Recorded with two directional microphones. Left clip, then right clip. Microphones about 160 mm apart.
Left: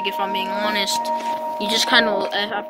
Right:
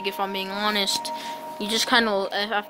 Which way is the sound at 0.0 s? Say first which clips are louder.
Left 5 dB; centre (ahead or behind).